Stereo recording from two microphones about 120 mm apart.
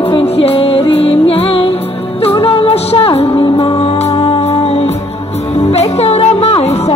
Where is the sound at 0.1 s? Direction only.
50° left (ahead or behind).